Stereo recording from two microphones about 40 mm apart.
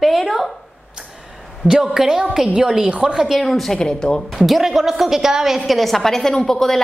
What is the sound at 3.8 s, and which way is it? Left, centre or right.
Speech, centre.